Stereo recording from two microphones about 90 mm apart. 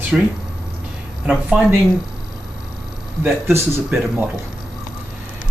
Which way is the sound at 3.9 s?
20° right (ahead or behind).